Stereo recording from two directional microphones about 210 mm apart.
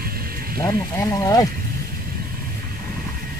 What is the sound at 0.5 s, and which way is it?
Speech, 15° left (ahead or behind).